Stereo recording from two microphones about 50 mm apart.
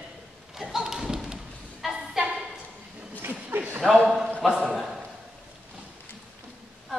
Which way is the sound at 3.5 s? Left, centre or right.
Right.